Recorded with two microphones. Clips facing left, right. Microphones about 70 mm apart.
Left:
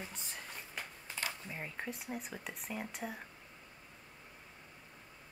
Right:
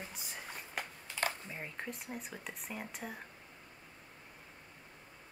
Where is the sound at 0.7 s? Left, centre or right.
Right.